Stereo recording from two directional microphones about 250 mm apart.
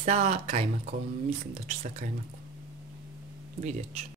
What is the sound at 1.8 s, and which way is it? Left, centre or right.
Speech, right.